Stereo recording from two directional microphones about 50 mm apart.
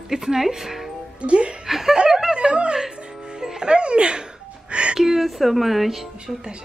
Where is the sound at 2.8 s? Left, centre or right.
Centre.